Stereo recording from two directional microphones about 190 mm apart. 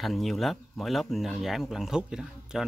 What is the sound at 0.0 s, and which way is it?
Speech, centre (ahead or behind).